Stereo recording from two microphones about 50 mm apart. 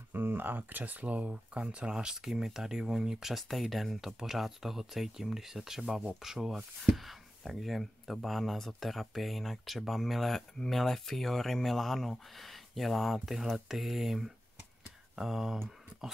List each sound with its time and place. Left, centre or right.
0.1 s speech: right; by 15.6 s centre